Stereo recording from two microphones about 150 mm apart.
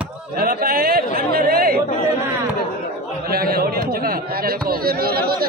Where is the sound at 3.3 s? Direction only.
90° right.